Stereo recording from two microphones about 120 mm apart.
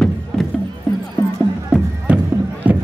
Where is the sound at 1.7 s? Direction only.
10° right (ahead or behind).